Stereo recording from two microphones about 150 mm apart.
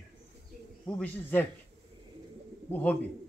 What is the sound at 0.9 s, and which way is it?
Speech, 10° left (ahead or behind).